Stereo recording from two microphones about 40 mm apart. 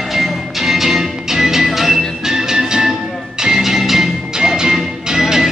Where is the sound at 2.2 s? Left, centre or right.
Centre.